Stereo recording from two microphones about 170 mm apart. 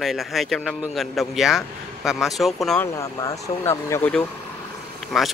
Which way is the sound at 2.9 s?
20° left (ahead or behind).